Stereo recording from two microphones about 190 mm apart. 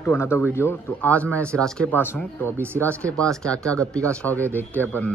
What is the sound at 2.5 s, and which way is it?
Speech, 10° right (ahead or behind).